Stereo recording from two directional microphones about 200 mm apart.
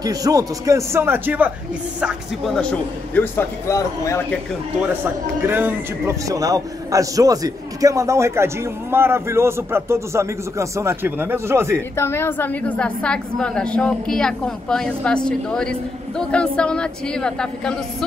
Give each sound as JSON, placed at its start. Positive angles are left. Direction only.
{"t": 0.0, "sound": "a man's voice", "side_deg": -15}
{"t": 3.2, "sound": "speech", "side_deg": 10}
{"t": 4.8, "sound": "a man's voice", "side_deg": -10}
{"t": 11.9, "sound": "a woman's voice", "side_deg": 10}